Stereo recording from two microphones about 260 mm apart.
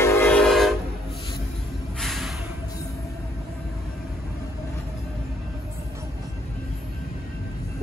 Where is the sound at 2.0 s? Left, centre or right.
Centre.